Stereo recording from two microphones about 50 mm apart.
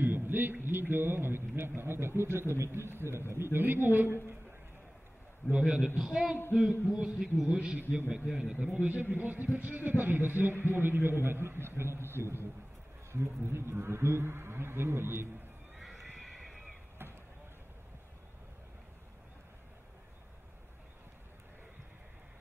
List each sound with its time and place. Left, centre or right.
0.0 s a sound: right
0.7 s speech: right
3.5 s speech: right
5.6 s a man's voice: centre
8.7 s a man's voice: right
15.8 s neigh: centre
17.0 s a sound: right